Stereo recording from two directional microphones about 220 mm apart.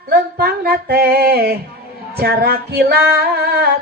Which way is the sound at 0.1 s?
45° right (ahead or behind).